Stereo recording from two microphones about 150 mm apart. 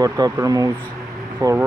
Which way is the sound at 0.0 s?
25° right (ahead or behind).